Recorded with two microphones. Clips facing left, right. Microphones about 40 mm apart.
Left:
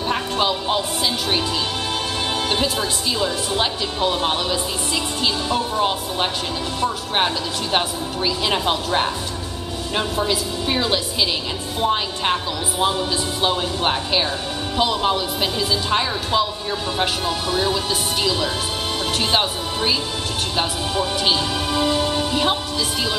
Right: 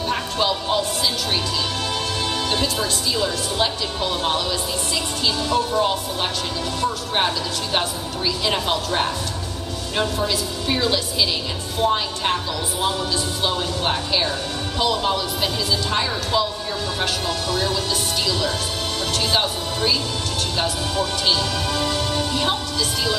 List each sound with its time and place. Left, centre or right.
0.1 s music: centre
2.5 s speech: centre
10.1 s speech: centre
13.4 s a man's voice: centre